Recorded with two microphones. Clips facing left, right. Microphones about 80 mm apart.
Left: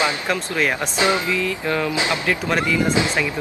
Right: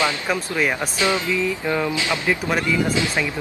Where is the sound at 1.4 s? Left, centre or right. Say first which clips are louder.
Even; centre.